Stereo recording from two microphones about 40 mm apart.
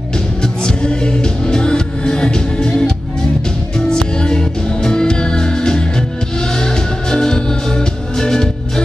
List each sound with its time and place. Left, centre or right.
0.4 s music: centre